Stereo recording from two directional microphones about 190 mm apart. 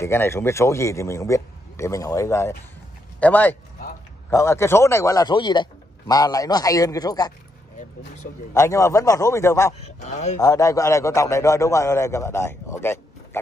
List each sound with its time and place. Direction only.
0.0 s a man's voice: 15° left (ahead or behind)
8.5 s a man's voice: 15° left (ahead or behind)
9.8 s a man's voice: 35° left (ahead or behind)
10.4 s a man's voice: 15° left (ahead or behind)